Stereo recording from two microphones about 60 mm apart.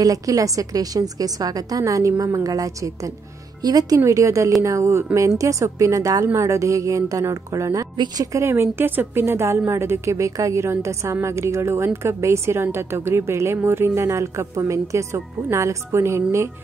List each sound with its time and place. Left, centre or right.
0.0 s a woman's voice: right
4.0 s a woman's voice: right
6.3 s a woman's voice: right